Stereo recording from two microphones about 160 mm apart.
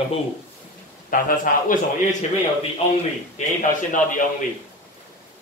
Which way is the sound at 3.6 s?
55° left (ahead or behind).